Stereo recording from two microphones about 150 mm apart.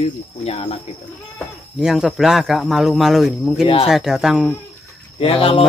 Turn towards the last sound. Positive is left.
turn(degrees=40)  # may be behind; listen again after turning